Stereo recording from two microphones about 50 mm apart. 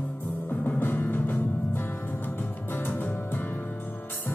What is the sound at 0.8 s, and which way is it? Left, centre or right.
Music, left.